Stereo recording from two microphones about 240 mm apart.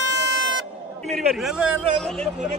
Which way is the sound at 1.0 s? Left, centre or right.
Centre.